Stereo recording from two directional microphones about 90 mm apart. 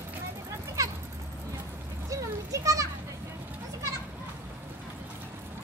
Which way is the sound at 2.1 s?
35° right (ahead or behind).